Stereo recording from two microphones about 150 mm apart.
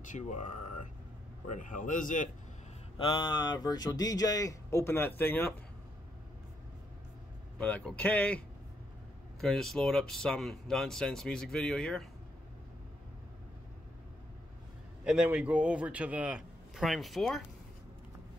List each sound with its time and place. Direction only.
0.0 s speech: 55° left (ahead or behind)
3.0 s speech: 35° left (ahead or behind); by 5.5 s 15° left (ahead or behind)
7.5 s speech: 5° left (ahead or behind)
15.0 s a man's voice: 10° right (ahead or behind)